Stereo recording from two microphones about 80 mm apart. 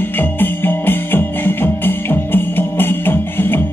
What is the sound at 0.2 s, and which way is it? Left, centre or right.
Music, left.